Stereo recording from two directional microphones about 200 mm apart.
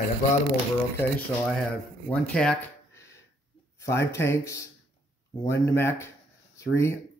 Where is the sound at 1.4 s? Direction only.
5° left (ahead or behind).